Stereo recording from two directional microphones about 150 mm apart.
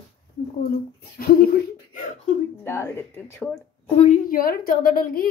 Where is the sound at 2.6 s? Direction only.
15° left (ahead or behind).